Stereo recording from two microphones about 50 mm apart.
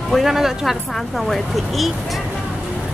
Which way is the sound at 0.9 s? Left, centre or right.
Centre.